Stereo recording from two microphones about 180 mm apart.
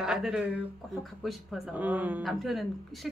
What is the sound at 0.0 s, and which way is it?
Speech, 5° right (ahead or behind).